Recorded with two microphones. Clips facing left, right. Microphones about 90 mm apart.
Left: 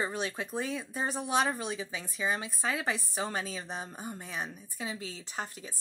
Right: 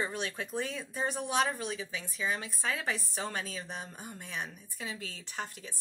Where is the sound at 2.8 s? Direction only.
5° left (ahead or behind).